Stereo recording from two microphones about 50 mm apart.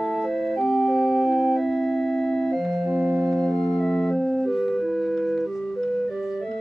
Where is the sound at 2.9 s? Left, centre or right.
Centre.